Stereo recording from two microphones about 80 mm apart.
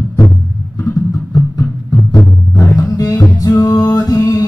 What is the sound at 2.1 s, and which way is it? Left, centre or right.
Music, left.